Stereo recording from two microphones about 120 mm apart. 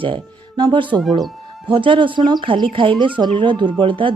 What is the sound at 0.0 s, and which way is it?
Speech, 45° right (ahead or behind).